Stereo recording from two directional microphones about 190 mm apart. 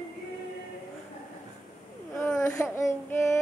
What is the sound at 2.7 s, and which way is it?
Music, 15° left (ahead or behind).